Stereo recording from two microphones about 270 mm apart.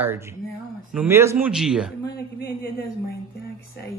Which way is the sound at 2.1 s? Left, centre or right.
Left.